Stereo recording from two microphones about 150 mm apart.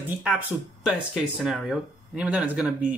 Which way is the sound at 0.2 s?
5° right (ahead or behind).